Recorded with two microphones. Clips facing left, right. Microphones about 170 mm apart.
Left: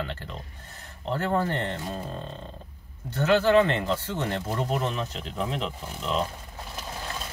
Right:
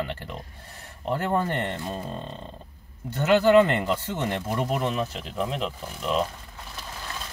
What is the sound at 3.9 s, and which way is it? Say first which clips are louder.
Speech: right 1 dB; 15° right (ahead or behind).